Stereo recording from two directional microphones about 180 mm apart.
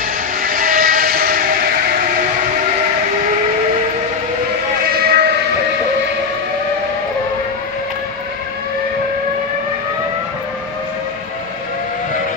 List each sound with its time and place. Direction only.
0.4 s vehicle: 55° right (ahead or behind)
4.9 s sheep: 60° right (ahead or behind)